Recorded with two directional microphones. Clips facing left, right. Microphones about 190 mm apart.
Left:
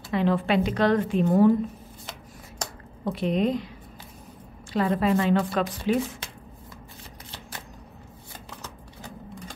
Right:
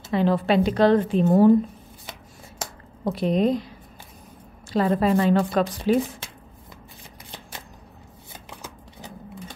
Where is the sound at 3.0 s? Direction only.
40° right (ahead or behind).